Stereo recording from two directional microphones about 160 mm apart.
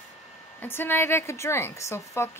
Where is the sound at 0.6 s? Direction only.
15° left (ahead or behind).